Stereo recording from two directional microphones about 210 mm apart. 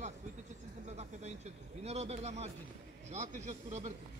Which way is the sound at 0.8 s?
30° right (ahead or behind).